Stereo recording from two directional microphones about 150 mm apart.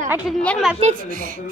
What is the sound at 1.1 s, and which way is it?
Speech, 65° right (ahead or behind).